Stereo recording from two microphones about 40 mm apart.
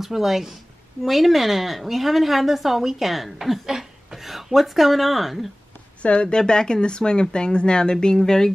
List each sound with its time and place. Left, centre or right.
0.0 s a woman's voice: centre
6.2 s speech: centre